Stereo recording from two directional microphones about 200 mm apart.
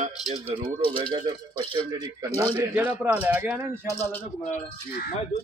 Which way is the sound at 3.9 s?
10° left (ahead or behind).